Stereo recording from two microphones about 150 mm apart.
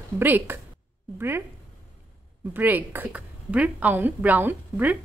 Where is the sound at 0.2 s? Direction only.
15° right (ahead or behind).